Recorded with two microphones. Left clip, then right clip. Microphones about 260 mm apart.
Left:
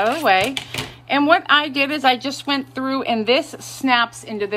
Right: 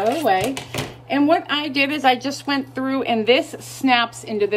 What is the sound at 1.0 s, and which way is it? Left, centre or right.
Speech, left.